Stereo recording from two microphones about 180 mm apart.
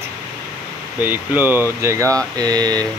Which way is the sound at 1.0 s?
10° right (ahead or behind).